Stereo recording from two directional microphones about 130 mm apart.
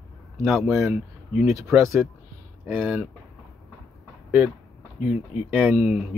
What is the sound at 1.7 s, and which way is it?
Speech, 20° right (ahead or behind).